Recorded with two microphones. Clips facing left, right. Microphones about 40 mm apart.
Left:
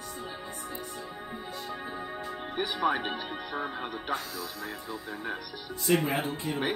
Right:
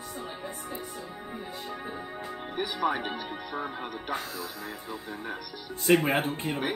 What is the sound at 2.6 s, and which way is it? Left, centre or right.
Speech, centre.